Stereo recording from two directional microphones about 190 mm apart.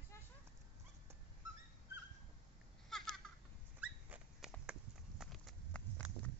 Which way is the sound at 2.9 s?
Centre (ahead or behind).